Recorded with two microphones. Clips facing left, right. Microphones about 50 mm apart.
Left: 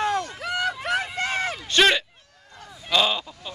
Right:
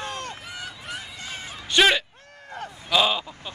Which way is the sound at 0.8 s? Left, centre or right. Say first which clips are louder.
Left 11 dB; left.